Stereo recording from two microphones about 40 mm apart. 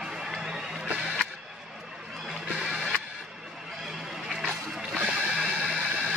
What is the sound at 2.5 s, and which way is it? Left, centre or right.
Music, right.